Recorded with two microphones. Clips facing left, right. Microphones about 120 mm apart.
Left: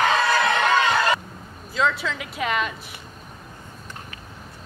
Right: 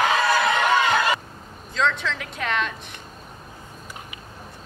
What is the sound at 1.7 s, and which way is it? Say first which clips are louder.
A woman's voice: even; 5° left (ahead or behind).